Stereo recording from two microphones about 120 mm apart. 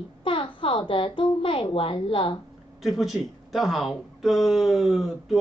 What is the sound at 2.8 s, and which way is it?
Speech, centre (ahead or behind).